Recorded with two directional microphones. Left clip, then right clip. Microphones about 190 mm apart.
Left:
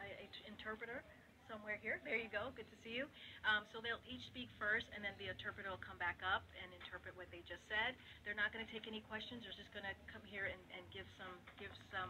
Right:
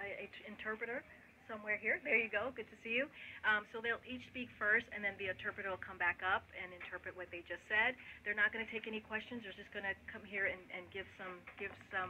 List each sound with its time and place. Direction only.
0.0 s telephone: 35° right (ahead or behind)
1.5 s a woman's voice: 35° right (ahead or behind)